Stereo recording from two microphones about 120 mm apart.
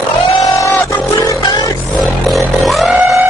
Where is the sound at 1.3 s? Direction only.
35° left (ahead or behind).